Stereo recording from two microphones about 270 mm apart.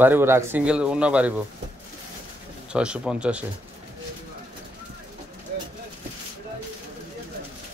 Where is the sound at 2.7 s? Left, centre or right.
Centre.